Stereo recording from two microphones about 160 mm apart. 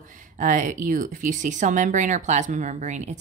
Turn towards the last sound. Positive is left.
turn(degrees=-50)  # may be behind; listen again after turning